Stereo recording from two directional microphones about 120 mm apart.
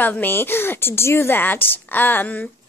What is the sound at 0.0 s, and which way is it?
Speech, 15° left (ahead or behind).